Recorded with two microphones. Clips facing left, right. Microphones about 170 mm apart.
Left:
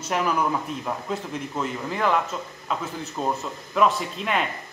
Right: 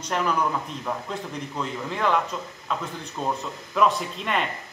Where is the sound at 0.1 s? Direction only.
5° left (ahead or behind).